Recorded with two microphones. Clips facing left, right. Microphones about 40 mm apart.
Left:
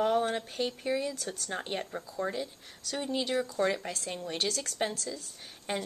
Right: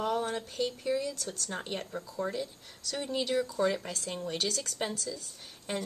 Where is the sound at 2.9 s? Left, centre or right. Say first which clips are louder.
Even; centre.